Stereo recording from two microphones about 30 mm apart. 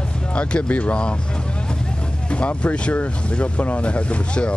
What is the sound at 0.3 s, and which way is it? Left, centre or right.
Speech, left.